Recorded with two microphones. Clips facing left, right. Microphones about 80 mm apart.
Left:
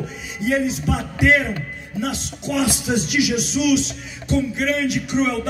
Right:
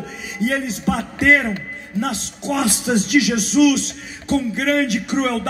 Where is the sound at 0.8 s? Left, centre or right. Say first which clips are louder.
Right 1 dB; right.